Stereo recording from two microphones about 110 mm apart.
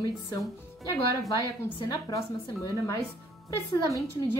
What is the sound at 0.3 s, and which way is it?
A woman's voice, 35° left (ahead or behind).